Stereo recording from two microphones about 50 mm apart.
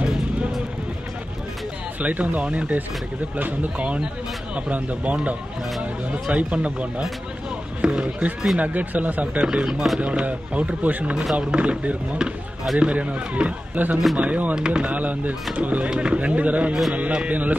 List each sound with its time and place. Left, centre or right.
2.0 s speech: right
8.5 s speech: right
9.4 s speech: centre
15.9 s speech: right